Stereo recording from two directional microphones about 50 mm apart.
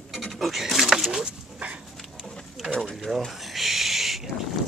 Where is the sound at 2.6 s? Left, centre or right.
Centre.